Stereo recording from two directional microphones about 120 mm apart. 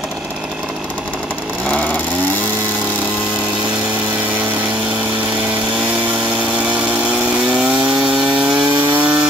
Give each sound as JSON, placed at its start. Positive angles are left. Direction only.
{"t": 8.1, "sound": "chainsaw", "side_deg": -10}
{"t": 8.9, "sound": "wood", "side_deg": -10}